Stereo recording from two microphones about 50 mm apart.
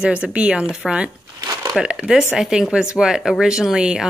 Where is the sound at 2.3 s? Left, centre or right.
Centre.